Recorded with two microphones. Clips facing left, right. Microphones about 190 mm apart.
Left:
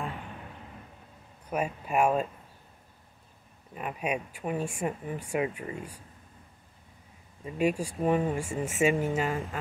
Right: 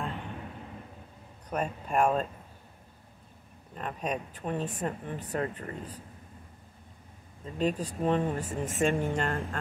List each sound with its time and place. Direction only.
1.5 s speech: 10° left (ahead or behind)
3.7 s speech: 10° left (ahead or behind)
7.4 s speech: 10° left (ahead or behind)